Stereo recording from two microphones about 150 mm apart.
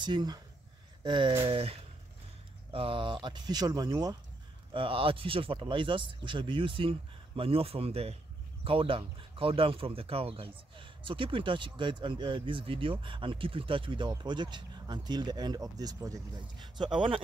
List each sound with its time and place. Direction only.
0.0 s speech: 30° right (ahead or behind)
4.7 s speech: 35° right (ahead or behind)